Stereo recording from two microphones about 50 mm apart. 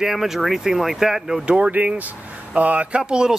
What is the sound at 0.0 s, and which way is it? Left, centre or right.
Speech, centre.